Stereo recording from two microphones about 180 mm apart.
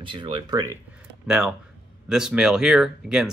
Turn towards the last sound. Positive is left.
turn(degrees=0)  # may be behind; listen again after turning